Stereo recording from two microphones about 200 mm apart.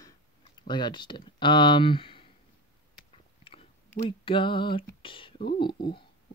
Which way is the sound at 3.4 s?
25° left (ahead or behind).